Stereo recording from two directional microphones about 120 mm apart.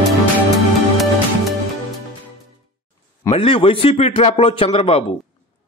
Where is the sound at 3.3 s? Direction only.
50° left (ahead or behind).